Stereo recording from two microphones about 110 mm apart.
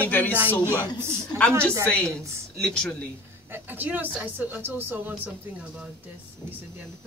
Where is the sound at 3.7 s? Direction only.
15° right (ahead or behind).